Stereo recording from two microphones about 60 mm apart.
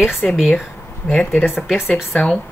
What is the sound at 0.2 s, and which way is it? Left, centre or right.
Speech, centre.